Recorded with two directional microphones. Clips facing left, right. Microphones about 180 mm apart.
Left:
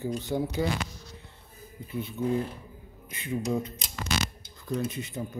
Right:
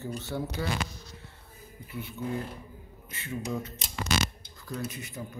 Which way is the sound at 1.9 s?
20° left (ahead or behind).